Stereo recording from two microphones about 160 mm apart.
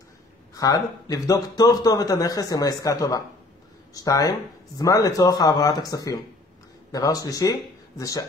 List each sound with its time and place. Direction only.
0.6 s a man's voice: 25° left (ahead or behind)